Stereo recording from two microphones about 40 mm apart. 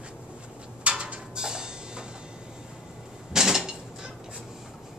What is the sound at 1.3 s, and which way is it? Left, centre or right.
Music, centre.